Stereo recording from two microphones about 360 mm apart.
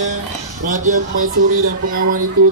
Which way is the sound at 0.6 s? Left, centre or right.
Right.